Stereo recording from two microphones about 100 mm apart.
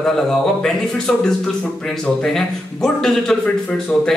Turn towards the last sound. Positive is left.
turn(degrees=10)  # may be behind; listen again after turning